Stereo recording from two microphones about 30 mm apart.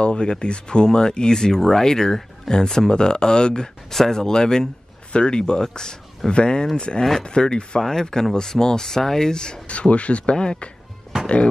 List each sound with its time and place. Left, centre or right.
0.0 s speech: left
3.9 s speech: centre; by 7.8 s left
7.8 s speech: centre
9.7 s speech: left
10.3 s speech: left